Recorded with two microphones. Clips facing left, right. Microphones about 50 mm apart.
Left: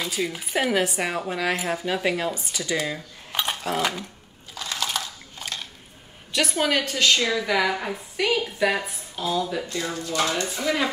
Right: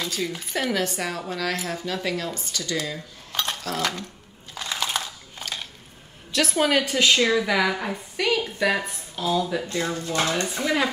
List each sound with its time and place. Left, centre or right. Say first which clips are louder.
0.0 s speech: left 1 dB; centre
4.6 s a sound: right 1 dB; centre
6.3 s a woman's voice: right 2 dB; centre
9.7 s speech: right 2 dB; right